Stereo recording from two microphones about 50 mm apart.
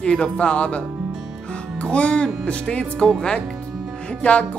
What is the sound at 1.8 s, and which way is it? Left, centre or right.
Speech, left.